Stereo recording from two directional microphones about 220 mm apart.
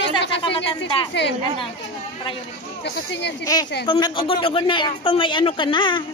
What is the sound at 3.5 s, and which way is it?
A woman's voice, 15° left (ahead or behind).